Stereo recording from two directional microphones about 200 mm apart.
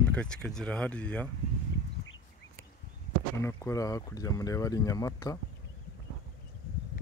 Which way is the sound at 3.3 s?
15° left (ahead or behind).